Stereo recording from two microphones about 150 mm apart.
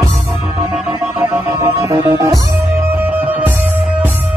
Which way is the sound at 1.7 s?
20° right (ahead or behind).